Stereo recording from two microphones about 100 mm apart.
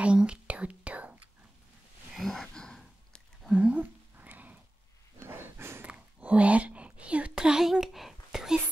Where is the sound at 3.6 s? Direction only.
15° right (ahead or behind).